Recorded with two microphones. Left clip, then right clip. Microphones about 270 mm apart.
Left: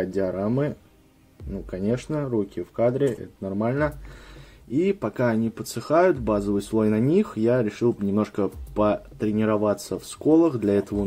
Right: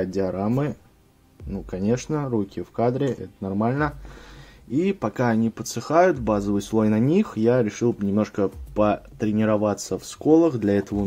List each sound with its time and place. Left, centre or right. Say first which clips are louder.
0.0 s speech: even; centre